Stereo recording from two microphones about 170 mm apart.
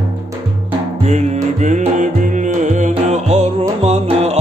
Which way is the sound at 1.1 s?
45° right (ahead or behind).